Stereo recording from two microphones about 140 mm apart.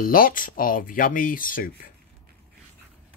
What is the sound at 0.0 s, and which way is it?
Speech, 90° left.